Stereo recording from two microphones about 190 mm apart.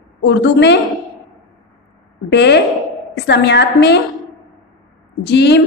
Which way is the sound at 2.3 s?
65° left (ahead or behind).